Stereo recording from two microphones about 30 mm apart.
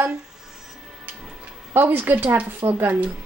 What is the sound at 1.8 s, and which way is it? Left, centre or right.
Speech, right.